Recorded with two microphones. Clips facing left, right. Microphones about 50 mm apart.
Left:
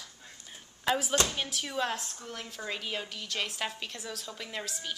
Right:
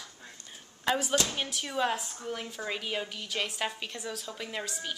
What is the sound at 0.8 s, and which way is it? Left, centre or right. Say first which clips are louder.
A woman's voice: even; centre.